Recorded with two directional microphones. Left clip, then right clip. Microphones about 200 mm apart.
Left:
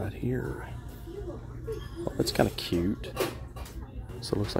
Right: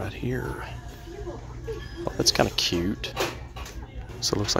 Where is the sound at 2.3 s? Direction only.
20° left (ahead or behind).